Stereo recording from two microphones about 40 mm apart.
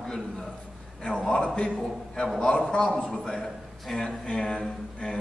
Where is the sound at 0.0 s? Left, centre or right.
Centre.